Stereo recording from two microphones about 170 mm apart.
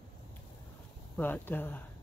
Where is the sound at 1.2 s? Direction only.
10° left (ahead or behind).